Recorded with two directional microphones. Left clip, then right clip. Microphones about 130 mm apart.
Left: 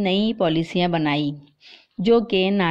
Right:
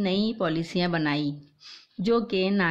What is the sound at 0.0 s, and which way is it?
A woman's voice, 25° left (ahead or behind).